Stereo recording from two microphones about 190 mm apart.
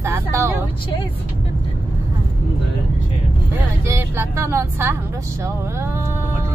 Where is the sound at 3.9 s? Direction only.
15° right (ahead or behind).